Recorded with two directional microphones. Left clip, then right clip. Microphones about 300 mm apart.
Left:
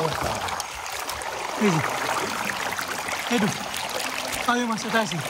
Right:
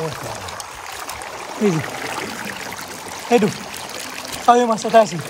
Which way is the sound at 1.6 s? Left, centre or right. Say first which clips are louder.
Right 3 dB; centre.